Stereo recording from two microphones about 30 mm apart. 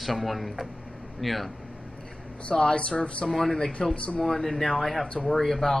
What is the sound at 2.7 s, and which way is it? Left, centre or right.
Speech, left.